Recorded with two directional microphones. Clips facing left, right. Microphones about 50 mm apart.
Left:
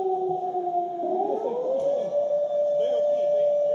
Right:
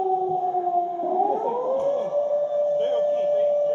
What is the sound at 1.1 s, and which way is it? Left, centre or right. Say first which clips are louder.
Siren: right 4 dB; right.